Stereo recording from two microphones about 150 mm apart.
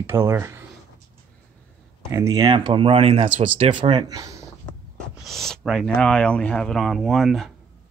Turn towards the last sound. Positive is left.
turn(degrees=0)  # may be behind; listen again after turning